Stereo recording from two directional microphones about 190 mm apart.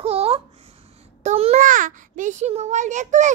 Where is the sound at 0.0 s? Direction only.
30° right (ahead or behind).